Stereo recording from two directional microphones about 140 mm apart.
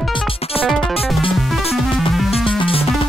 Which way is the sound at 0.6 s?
40° left (ahead or behind).